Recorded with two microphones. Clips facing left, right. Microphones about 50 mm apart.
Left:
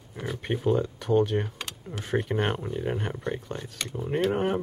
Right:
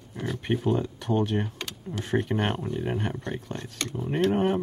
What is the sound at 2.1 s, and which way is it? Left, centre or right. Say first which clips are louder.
Speech: even; centre.